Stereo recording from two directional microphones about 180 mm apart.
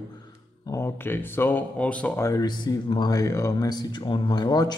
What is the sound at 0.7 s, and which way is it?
Speech, 15° left (ahead or behind).